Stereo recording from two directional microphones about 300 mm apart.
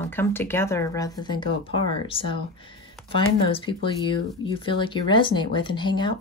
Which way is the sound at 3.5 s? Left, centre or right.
Centre.